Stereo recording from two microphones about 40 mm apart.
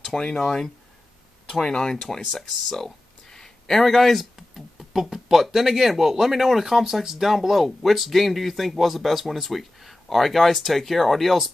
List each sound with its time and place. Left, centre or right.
0.2 s speech: centre
2.0 s speech: centre
4.2 s a sound: centre
5.1 s speech: centre